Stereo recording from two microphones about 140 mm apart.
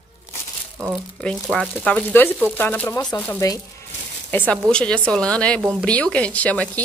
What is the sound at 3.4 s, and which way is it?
Speech, 25° left (ahead or behind).